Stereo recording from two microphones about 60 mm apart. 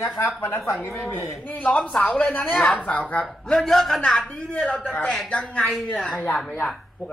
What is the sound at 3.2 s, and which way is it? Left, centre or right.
Speech, centre.